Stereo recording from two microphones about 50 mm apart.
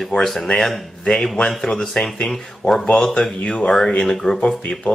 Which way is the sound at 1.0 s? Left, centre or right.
Centre.